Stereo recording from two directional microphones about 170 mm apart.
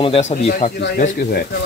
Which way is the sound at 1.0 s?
65° left (ahead or behind).